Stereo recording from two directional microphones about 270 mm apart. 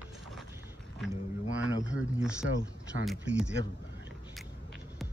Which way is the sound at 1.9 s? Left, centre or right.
Centre.